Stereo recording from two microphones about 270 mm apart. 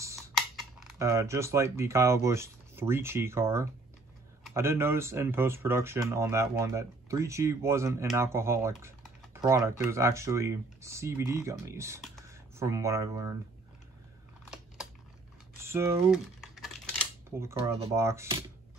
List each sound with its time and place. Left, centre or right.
0.9 s speech: centre
15.6 s speech: centre
17.4 s speech: centre